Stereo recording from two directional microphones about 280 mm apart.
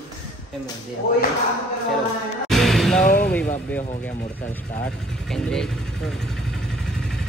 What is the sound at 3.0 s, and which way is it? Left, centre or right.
Speech, left.